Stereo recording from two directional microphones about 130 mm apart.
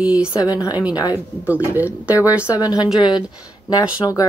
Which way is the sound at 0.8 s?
10° right (ahead or behind).